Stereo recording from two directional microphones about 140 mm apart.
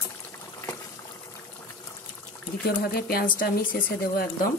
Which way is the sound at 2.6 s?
90° left.